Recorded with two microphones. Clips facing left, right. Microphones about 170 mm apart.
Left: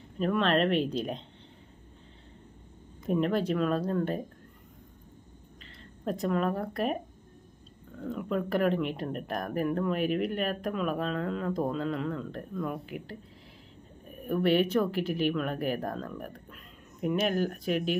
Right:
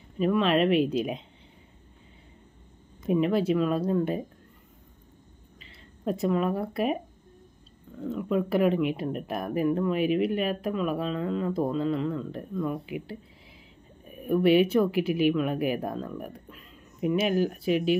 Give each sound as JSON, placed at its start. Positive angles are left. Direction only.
{"t": 0.2, "sound": "speech", "side_deg": -5}
{"t": 3.1, "sound": "speech", "side_deg": -5}
{"t": 5.7, "sound": "speech", "side_deg": -10}
{"t": 8.0, "sound": "speech", "side_deg": -5}
{"t": 14.2, "sound": "speech", "side_deg": -10}